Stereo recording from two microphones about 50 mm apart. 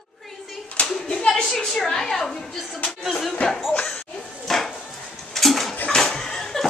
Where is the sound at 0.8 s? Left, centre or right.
Centre.